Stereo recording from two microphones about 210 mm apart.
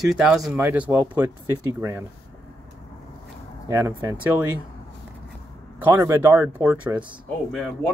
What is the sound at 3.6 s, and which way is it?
Speech, 15° right (ahead or behind).